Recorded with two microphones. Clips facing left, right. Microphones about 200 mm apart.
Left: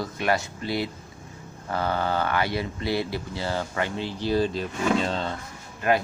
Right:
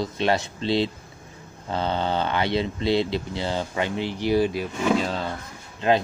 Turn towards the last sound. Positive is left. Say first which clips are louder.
# right 2 dB
turn(degrees=-25)  # may be behind; listen again after turning